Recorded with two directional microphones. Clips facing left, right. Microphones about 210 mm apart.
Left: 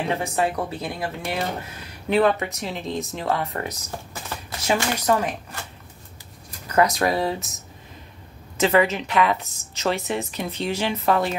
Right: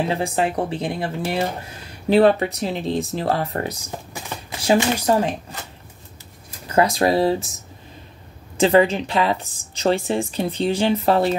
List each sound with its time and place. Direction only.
0.1 s a woman's voice: 30° right (ahead or behind)
4.7 s speech: 25° right (ahead or behind)
6.7 s a woman's voice: 30° right (ahead or behind)
8.5 s a woman's voice: 30° right (ahead or behind)